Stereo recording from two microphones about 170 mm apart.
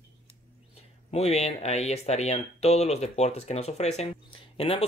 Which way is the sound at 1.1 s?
40° left (ahead or behind).